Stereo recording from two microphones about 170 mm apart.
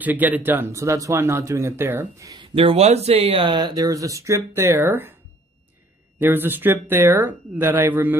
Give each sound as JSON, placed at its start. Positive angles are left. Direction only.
{"t": 0.0, "sound": "speech", "side_deg": -10}
{"t": 2.5, "sound": "speech", "side_deg": -35}
{"t": 6.1, "sound": "speech", "side_deg": -10}